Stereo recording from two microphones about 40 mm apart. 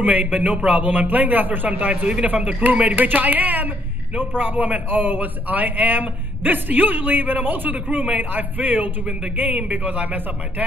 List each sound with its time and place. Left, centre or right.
0.0 s a man's voice: right